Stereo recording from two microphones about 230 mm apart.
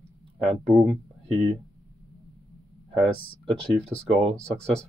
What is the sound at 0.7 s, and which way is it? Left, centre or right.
Speech, centre.